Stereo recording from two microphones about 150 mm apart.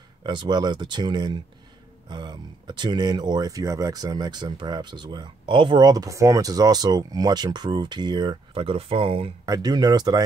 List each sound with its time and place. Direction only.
0.2 s speech: 30° right (ahead or behind)
9.5 s speech: 25° right (ahead or behind)